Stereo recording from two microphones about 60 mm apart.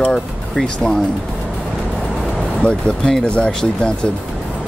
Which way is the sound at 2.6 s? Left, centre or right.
Centre.